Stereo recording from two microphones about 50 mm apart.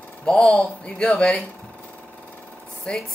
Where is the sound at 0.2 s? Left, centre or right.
Left.